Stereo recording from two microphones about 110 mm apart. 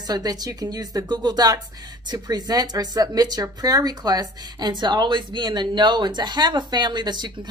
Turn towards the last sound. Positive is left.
turn(degrees=-40)  # may be behind; listen again after turning